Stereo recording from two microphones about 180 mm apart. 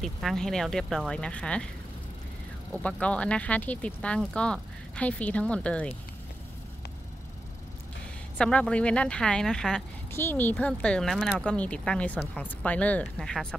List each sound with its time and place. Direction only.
0.0 s speech: centre (ahead or behind)
2.7 s speech: 5° left (ahead or behind)
8.4 s speech: 5° left (ahead or behind)